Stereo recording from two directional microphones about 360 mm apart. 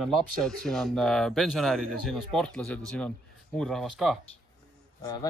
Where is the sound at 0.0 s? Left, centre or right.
Centre.